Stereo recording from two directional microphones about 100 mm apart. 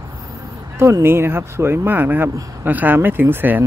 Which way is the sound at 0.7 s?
30° right (ahead or behind).